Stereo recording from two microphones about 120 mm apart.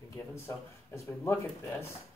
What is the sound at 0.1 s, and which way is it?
Speech, 25° left (ahead or behind).